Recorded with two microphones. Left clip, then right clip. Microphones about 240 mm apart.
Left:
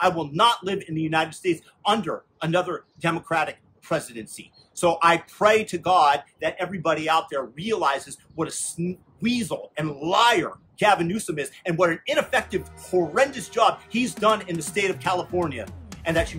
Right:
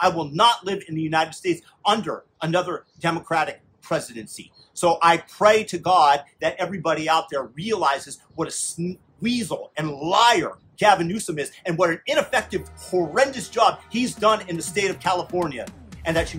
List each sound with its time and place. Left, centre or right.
0.0 s a man's voice: centre